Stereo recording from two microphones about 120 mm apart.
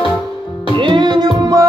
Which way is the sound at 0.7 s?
40° right (ahead or behind).